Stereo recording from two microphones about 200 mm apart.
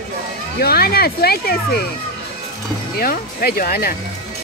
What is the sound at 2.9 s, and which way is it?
Speech, 50° left (ahead or behind).